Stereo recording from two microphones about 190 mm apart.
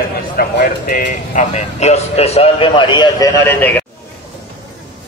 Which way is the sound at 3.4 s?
10° left (ahead or behind).